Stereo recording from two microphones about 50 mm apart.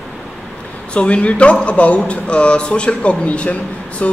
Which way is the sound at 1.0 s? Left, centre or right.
Left.